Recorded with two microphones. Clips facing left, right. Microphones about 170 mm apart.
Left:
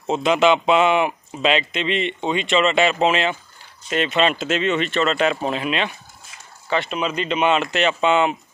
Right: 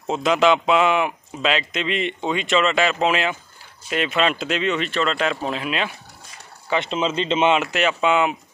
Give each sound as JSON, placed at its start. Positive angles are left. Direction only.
{"t": 0.0, "sound": "speech", "side_deg": 0}
{"t": 6.7, "sound": "speech", "side_deg": -20}
{"t": 7.5, "sound": "speech", "side_deg": -10}